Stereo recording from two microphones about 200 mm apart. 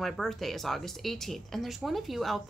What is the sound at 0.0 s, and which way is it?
Speech, centre (ahead or behind).